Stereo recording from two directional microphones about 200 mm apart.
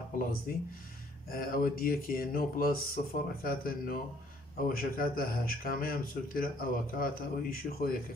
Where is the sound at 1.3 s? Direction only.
45° left (ahead or behind).